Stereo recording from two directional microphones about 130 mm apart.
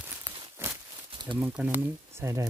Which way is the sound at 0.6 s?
20° right (ahead or behind).